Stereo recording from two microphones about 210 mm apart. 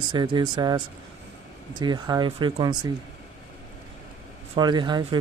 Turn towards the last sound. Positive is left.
turn(degrees=-20)  # may be behind; listen again after turning